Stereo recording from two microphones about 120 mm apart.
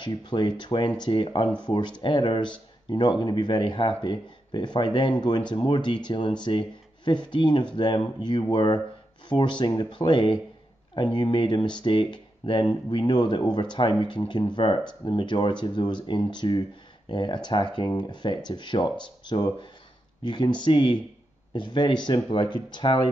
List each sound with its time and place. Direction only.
0.0 s speech: 40° left (ahead or behind)